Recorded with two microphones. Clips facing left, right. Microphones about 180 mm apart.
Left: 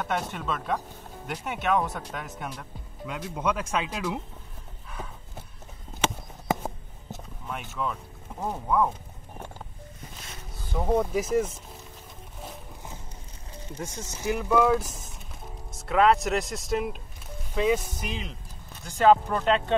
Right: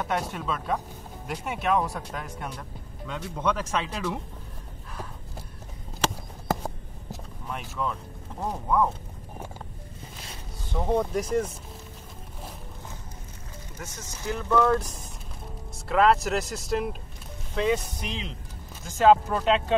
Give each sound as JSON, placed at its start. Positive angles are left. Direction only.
{"t": 0.0, "sound": "speech", "side_deg": 0}
{"t": 6.5, "sound": "a sound", "side_deg": 5}
{"t": 10.7, "sound": "speech", "side_deg": 5}
{"t": 13.8, "sound": "speech", "side_deg": 30}
{"t": 14.2, "sound": "speech", "side_deg": 15}